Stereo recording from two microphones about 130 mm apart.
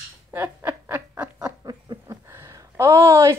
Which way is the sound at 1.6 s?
25° right (ahead or behind).